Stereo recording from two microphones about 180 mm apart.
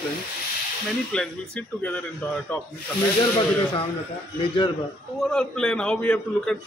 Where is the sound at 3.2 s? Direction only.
25° left (ahead or behind).